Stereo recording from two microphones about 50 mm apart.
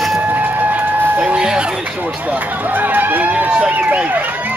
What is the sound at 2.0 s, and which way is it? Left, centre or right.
Speech, right.